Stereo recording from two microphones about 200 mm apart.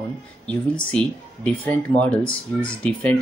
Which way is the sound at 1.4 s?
5° left (ahead or behind).